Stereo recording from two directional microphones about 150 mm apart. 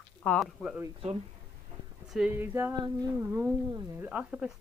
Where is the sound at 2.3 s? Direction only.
15° right (ahead or behind).